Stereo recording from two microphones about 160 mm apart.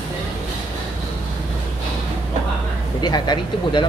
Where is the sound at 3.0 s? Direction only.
25° left (ahead or behind).